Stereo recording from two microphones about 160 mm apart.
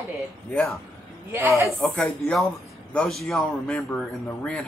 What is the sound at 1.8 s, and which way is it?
A man's voice, 5° left (ahead or behind).